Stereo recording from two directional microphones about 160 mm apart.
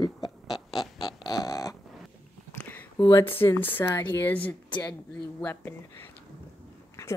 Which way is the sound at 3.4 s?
15° left (ahead or behind).